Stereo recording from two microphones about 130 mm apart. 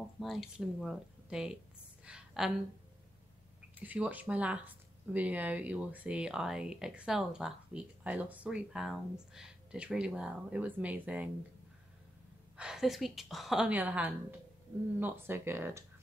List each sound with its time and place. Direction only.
0.2 s a woman's voice: centre (ahead or behind)
2.0 s a sound: 5° right (ahead or behind)
3.7 s speech: 10° right (ahead or behind)
12.5 s a woman's voice: 5° right (ahead or behind)